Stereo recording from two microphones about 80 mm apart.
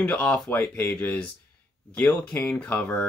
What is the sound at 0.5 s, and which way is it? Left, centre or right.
Speech, left.